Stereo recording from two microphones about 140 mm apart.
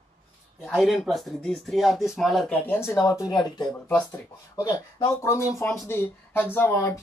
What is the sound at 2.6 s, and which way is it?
Speech, 15° left (ahead or behind).